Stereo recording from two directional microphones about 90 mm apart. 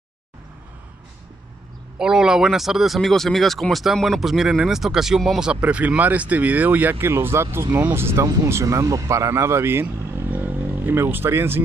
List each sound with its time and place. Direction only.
2.0 s speech: 5° right (ahead or behind); by 11.6 s 25° right (ahead or behind)